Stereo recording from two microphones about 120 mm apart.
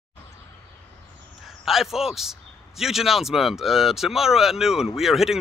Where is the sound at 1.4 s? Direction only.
Centre (ahead or behind).